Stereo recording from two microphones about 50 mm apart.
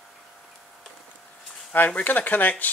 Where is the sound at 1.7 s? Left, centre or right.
Left.